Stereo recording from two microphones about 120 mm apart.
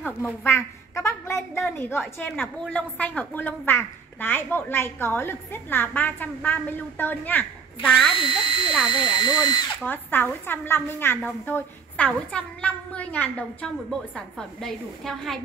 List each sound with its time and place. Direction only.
0.0 s a woman's voice: 15° left (ahead or behind)
8.2 s speech: 40° left (ahead or behind)
9.8 s a woman's voice: 15° left (ahead or behind)